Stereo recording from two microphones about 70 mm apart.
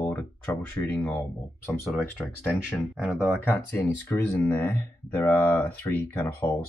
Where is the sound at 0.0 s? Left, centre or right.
Left.